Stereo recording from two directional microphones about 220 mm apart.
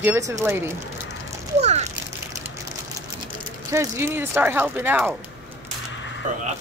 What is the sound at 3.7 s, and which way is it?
Speech, 10° right (ahead or behind).